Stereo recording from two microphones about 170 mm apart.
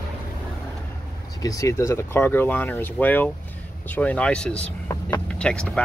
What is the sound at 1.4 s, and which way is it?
Speech, 20° left (ahead or behind).